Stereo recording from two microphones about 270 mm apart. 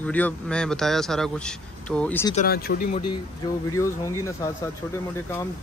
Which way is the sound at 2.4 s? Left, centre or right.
Left.